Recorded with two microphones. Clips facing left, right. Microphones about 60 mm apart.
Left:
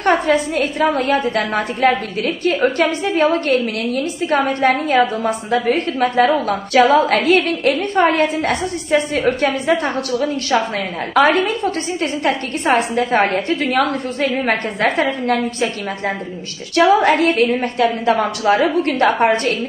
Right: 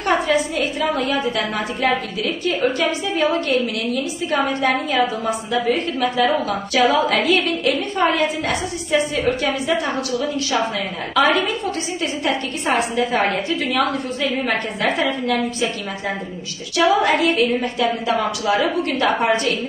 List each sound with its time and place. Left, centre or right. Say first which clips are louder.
0.0 s a woman's voice: left 3 dB; left
17.1 s a woman's voice: left 3 dB; left